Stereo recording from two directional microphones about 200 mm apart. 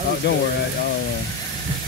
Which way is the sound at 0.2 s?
60° left (ahead or behind).